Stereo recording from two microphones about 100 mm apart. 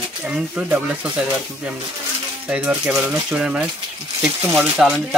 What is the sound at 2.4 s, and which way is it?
Speech, 10° right (ahead or behind).